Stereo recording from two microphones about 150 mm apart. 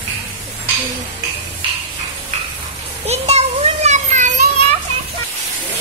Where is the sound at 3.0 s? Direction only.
45° right (ahead or behind).